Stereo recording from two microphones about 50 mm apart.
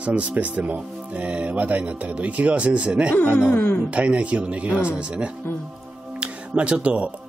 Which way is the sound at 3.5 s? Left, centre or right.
Left.